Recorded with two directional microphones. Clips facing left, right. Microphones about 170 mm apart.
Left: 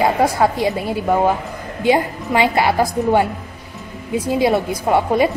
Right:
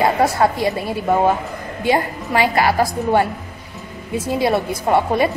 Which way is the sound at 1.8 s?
15° left (ahead or behind).